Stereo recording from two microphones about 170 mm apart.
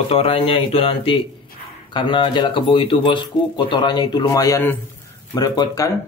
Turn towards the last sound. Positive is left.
turn(degrees=20)  # may be behind; listen again after turning